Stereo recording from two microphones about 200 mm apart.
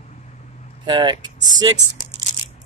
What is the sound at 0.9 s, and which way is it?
Speech, 20° right (ahead or behind).